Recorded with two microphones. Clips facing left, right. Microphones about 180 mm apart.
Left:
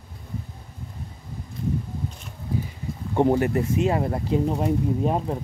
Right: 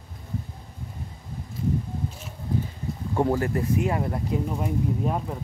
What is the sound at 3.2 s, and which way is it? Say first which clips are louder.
Speech: left 4 dB; 20° left (ahead or behind).